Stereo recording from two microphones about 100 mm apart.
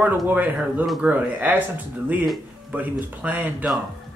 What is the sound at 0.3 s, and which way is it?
Speech, 15° right (ahead or behind).